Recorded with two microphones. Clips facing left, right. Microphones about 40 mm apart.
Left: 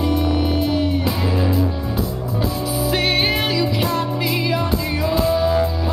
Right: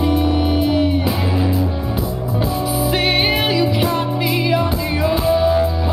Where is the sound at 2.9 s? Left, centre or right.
Right.